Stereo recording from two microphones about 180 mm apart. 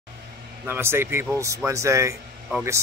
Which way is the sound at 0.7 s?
15° right (ahead or behind).